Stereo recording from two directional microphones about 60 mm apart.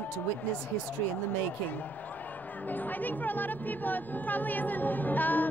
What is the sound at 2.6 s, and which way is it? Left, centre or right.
Speech, left.